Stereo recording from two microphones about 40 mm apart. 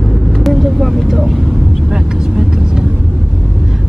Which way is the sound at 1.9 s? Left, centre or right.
Centre.